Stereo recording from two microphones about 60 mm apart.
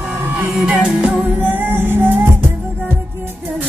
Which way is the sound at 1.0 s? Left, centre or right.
Centre.